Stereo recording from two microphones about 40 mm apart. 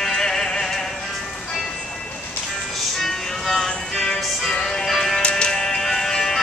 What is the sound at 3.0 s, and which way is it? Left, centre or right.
Music, centre.